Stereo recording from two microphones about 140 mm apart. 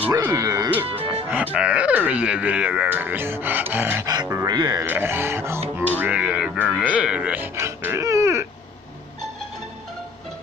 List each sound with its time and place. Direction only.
0.1 s speech: 20° right (ahead or behind)
1.3 s speech: 10° right (ahead or behind)
4.1 s speech: 25° right (ahead or behind)
4.8 s speech: 15° right (ahead or behind)